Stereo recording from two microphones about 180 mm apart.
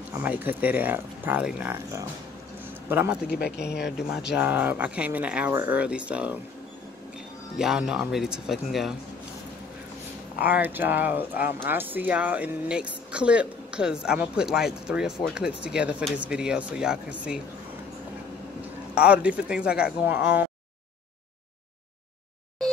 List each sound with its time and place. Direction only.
0.2 s speech: 10° right (ahead or behind)
3.3 s speech: 60° left (ahead or behind)
4.4 s speech: 10° right (ahead or behind)
7.5 s speech: 5° right (ahead or behind)
10.5 s speech: 10° right (ahead or behind)
18.9 s speech: 5° right (ahead or behind)